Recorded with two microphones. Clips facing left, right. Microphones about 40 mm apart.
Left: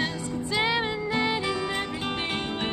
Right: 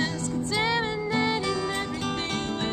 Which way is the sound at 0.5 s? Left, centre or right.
Centre.